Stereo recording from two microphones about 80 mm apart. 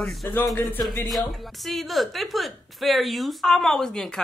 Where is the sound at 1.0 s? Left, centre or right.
Centre.